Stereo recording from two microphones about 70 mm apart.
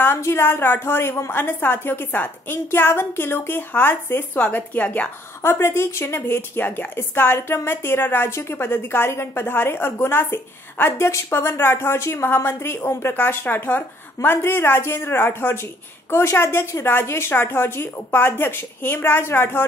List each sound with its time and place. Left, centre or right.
0.0 s a woman's voice: left
5.4 s a woman's voice: left